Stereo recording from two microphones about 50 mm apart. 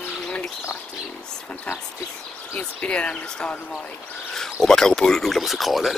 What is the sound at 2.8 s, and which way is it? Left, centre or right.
Speech, left.